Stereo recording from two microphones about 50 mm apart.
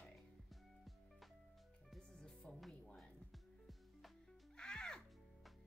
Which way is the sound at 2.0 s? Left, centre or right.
Centre.